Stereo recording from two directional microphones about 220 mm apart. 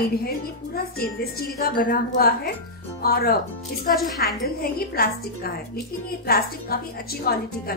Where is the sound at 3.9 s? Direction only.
Centre (ahead or behind).